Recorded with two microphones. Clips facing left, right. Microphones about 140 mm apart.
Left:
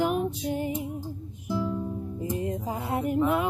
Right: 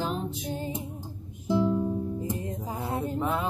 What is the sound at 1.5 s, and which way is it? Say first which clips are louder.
Music: right 5 dB; 20° right (ahead or behind).